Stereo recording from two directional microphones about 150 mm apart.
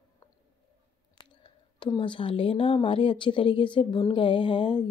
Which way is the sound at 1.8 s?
30° left (ahead or behind).